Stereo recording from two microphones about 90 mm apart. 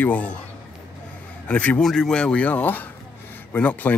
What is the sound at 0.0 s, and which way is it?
Speech, 15° left (ahead or behind).